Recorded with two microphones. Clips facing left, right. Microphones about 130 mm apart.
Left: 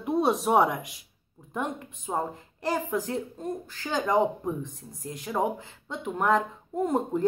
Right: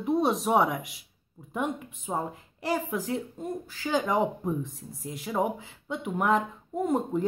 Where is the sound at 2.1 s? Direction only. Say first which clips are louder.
Left 1 dB; centre (ahead or behind).